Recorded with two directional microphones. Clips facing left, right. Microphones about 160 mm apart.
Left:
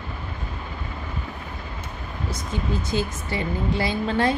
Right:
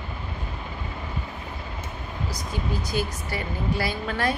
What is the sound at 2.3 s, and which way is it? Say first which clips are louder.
A woman's voice: left 3 dB; 25° left (ahead or behind).